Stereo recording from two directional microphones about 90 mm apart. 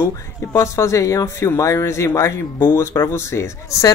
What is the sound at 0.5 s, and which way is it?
Speech, 35° left (ahead or behind).